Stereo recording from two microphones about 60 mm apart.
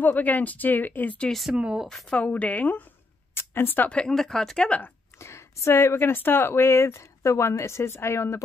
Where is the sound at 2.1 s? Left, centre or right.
Left.